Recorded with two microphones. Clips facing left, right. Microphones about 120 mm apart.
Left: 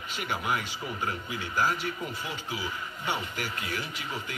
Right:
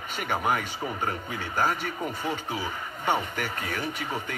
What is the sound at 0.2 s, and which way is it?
Speech, 45° right (ahead or behind).